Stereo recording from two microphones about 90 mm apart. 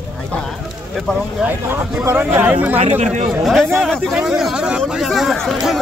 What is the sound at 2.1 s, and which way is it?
Speech, 25° right (ahead or behind).